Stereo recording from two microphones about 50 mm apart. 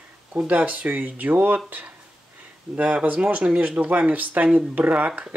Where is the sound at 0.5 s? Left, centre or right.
Right.